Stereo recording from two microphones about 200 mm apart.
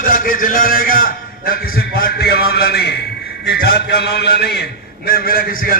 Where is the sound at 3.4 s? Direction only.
55° left (ahead or behind).